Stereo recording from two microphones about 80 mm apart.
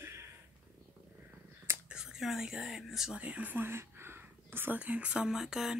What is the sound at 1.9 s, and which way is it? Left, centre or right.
Speech, centre.